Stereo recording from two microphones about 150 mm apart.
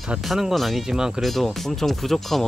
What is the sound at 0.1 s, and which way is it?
Speech, centre (ahead or behind).